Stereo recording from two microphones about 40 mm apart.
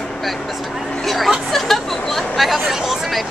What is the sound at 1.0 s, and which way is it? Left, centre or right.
Speech, centre.